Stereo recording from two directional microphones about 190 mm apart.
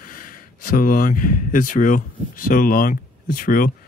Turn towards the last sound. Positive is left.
turn(degrees=45)  # may be behind; listen again after turning